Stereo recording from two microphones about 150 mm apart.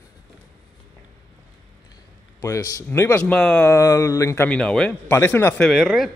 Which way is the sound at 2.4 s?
20° left (ahead or behind).